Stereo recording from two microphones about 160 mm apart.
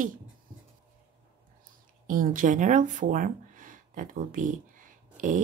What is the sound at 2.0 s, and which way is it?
Speech, 55° right (ahead or behind).